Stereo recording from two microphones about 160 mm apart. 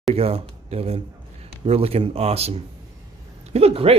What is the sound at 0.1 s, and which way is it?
Speech, 40° right (ahead or behind).